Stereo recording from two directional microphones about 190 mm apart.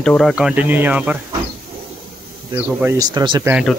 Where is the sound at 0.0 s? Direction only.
Centre (ahead or behind).